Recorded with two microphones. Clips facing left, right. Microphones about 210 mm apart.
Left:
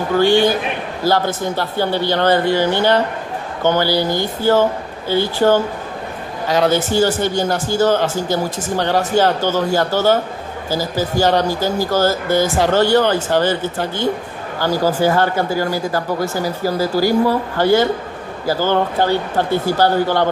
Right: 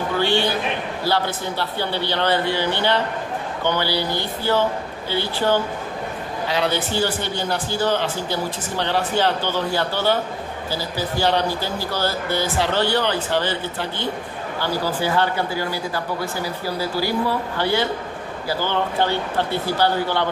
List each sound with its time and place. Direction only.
0.2 s a man's voice: 45° left (ahead or behind)